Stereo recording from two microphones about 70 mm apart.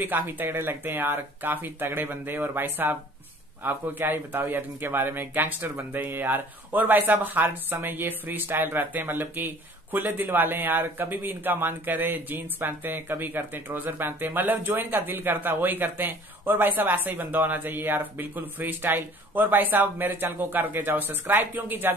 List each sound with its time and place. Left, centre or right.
0.0 s speech: right